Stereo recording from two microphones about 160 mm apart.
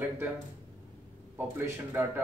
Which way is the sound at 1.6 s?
15° right (ahead or behind).